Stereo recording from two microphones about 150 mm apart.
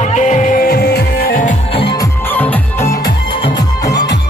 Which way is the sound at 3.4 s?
25° left (ahead or behind).